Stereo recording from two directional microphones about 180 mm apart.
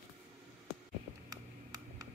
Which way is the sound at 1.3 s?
20° right (ahead or behind).